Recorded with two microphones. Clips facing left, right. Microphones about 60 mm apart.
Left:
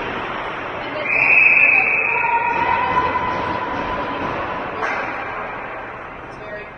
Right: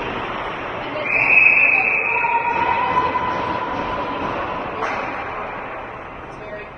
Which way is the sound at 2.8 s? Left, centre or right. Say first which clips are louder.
Even; centre.